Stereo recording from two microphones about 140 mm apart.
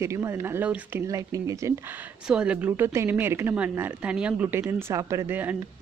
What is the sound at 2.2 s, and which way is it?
Speech, 5° right (ahead or behind).